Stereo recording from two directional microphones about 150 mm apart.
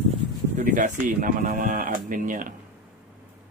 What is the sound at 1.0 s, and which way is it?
Speech, 55° right (ahead or behind).